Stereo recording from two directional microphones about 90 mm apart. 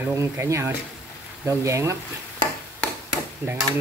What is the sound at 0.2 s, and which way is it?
Speech, 35° right (ahead or behind).